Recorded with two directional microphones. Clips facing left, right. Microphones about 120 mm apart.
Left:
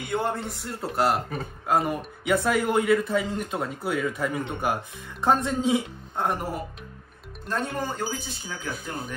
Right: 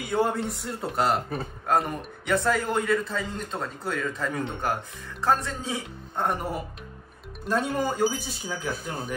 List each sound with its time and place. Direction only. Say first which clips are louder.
0.0 s speech: right 2 dB; centre (ahead or behind); by 5.8 s 20° left (ahead or behind)
6.1 s speech: even; centre (ahead or behind)